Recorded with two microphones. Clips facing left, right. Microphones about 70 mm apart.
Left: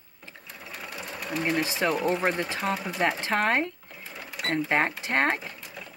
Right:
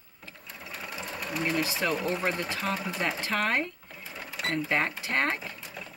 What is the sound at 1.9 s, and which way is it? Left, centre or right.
Speech, centre.